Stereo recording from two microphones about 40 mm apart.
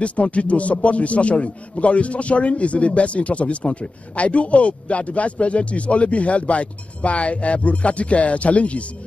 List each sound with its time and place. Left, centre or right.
0.0 s a man's voice: left